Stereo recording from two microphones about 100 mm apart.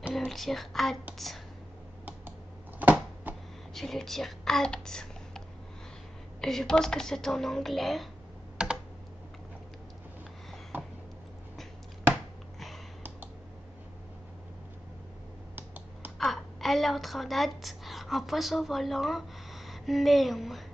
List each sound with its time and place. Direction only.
0.3 s speech: centre (ahead or behind)
2.8 s a sound: 15° right (ahead or behind)
3.7 s speech: centre (ahead or behind)
4.8 s a sound: 5° left (ahead or behind)
6.4 s speech: 5° left (ahead or behind)
8.6 s computer keyboard: 5° right (ahead or behind)
10.7 s a sound: 20° right (ahead or behind)
12.1 s chopping: centre (ahead or behind)
15.5 s computer keyboard: 20° right (ahead or behind)
16.2 s a woman's voice: centre (ahead or behind)